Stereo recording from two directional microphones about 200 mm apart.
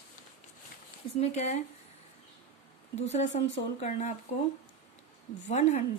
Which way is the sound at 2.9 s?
35° left (ahead or behind).